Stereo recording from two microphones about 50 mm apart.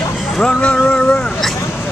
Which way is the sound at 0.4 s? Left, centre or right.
Left.